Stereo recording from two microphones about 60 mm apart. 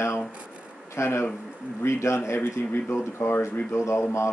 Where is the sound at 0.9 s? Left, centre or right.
Left.